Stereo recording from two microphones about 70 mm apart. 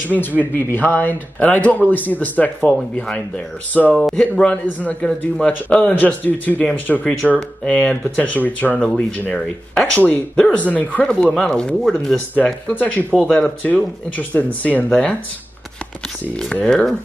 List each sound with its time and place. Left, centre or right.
0.4 s speech: left
11.3 s speech: centre
12.4 s speech: centre
16.6 s speech: centre